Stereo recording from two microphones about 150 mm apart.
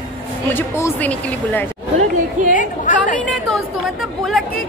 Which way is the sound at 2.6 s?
60° left (ahead or behind).